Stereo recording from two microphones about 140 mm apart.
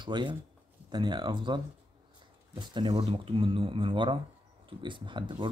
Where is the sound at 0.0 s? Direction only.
35° right (ahead or behind).